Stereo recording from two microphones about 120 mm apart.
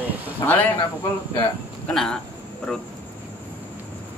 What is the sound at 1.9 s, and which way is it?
Speech, 5° left (ahead or behind).